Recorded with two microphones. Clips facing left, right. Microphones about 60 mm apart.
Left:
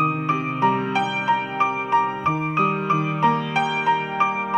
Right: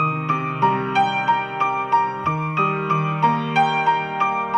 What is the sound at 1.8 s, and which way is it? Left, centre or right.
Music, centre.